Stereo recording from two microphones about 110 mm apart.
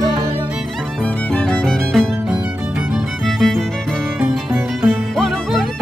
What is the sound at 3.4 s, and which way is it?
Music, centre (ahead or behind).